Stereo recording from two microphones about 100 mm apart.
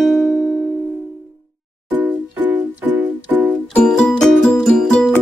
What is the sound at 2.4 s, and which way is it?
Music, 15° right (ahead or behind).